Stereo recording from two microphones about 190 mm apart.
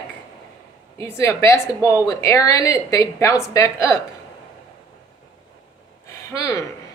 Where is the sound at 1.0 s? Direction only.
15° left (ahead or behind).